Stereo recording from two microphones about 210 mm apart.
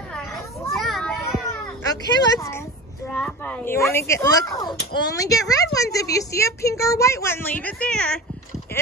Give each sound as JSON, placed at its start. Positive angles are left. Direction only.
{"t": 0.1, "sound": "children playing", "side_deg": 0}
{"t": 2.1, "sound": "speech", "side_deg": 15}
{"t": 3.1, "sound": "speech", "side_deg": 5}